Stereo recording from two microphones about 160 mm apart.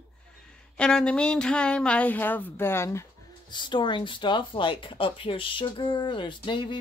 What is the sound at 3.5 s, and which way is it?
Speech, 30° left (ahead or behind).